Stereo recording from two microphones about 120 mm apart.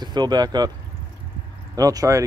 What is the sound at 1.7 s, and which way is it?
Speech, 30° right (ahead or behind).